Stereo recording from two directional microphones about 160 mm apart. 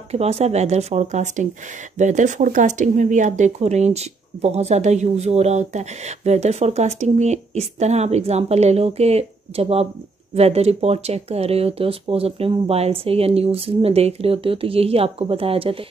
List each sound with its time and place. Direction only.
0.1 s speech: 40° right (ahead or behind)